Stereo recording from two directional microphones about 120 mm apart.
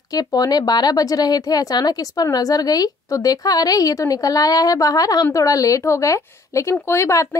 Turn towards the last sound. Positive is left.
turn(degrees=25)  # may be behind; listen again after turning